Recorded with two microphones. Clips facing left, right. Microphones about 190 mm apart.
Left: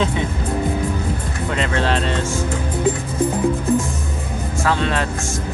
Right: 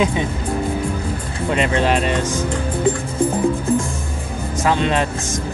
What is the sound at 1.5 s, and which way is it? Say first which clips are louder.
Speech: right 3 dB; 15° right (ahead or behind).